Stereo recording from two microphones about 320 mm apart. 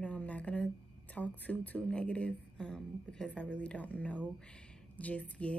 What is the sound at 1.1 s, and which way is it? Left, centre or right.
Speech, centre.